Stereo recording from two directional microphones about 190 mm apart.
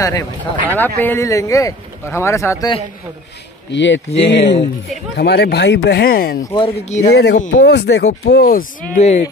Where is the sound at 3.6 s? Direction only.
70° left (ahead or behind).